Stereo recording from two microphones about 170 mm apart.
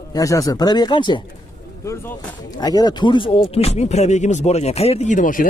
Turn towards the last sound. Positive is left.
turn(degrees=50)  # may be behind; listen again after turning